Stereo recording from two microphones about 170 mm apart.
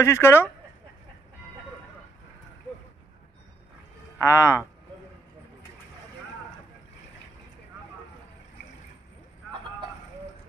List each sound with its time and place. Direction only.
0.0 s speech: 15° left (ahead or behind)
4.2 s speech: 15° left (ahead or behind)